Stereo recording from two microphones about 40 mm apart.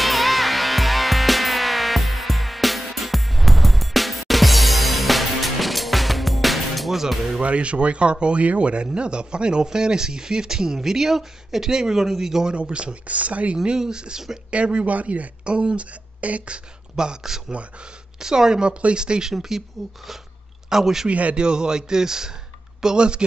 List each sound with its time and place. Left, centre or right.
0.0 s music: centre
7.4 s speech: right; by 12.5 s centre
12.5 s speech: right
13.6 s speech: centre
14.5 s speech: right
15.4 s speech: right
16.9 s speech: centre
19.3 s speech: centre
19.8 s speech: centre
20.7 s speech: centre
21.1 s speech: right